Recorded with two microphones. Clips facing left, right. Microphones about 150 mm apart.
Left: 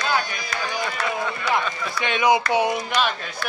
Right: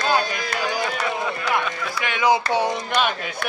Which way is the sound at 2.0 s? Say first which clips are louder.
Even; 20° left (ahead or behind).